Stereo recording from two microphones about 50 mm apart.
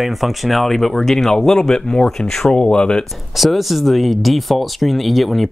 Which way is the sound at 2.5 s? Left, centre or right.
Centre.